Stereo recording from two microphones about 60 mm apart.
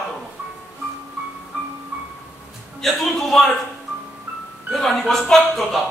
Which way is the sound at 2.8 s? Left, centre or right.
Centre.